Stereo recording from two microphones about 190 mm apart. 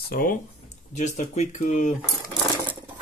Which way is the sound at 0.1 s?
50° left (ahead or behind).